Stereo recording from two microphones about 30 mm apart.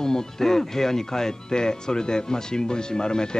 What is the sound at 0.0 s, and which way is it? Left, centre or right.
Speech, centre.